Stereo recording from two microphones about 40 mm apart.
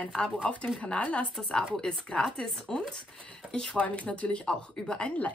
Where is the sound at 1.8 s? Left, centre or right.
Centre.